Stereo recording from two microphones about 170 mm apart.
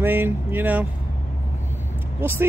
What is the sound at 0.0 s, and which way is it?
Speech, 10° right (ahead or behind).